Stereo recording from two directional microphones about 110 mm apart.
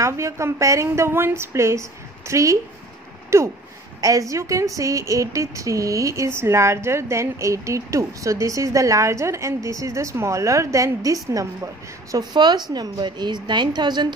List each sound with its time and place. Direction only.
0.0 s a woman's voice: 25° right (ahead or behind)